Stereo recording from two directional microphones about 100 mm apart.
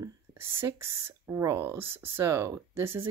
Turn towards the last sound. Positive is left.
turn(degrees=-25)  # may be behind; listen again after turning